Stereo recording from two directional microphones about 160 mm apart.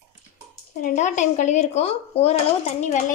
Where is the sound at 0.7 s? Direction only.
50° left (ahead or behind).